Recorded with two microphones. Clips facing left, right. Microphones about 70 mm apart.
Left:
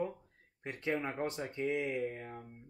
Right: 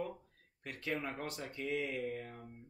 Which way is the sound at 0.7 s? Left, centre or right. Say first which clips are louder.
Left 4 dB; left.